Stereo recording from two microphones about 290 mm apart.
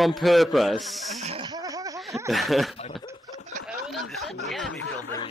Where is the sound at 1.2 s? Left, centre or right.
Centre.